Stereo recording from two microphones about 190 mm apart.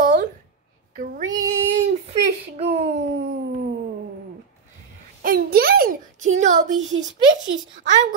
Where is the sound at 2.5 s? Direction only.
30° right (ahead or behind).